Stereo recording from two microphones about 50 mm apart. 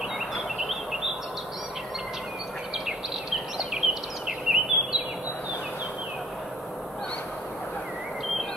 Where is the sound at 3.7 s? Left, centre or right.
Centre.